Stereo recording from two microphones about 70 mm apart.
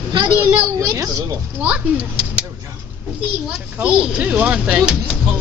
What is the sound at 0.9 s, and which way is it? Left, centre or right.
Speech, right.